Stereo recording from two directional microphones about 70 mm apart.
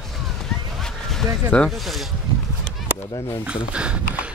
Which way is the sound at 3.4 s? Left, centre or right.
Centre.